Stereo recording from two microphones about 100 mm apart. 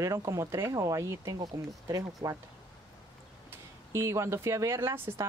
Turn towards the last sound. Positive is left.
turn(degrees=-25)  # may be behind; listen again after turning